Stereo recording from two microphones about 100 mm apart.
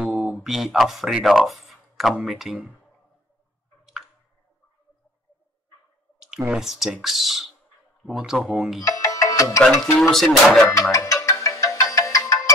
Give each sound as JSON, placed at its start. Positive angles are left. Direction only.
{"t": 0.0, "sound": "speech", "side_deg": -5}
{"t": 6.1, "sound": "clicking", "side_deg": -5}
{"t": 6.5, "sound": "speech", "side_deg": -5}
{"t": 8.8, "sound": "music", "side_deg": 30}
{"t": 9.6, "sound": "speech", "side_deg": 0}
{"t": 10.9, "sound": "music", "side_deg": 30}